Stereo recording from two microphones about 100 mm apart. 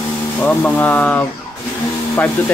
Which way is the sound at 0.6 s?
20° left (ahead or behind).